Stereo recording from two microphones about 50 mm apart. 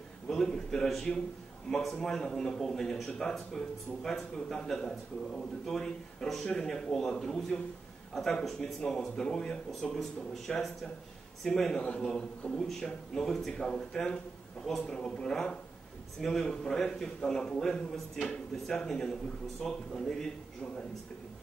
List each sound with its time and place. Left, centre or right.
0.3 s a man's voice: centre